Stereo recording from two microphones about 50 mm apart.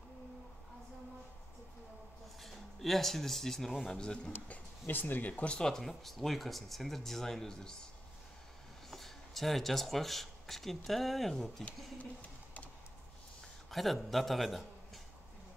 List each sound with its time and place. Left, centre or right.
2.4 s speech: centre
4.0 s speech: centre
4.8 s speech: left
5.5 s speech: centre
8.9 s speech: centre
12.0 s a sound: left
13.7 s a sound: centre
14.1 s a man's voice: centre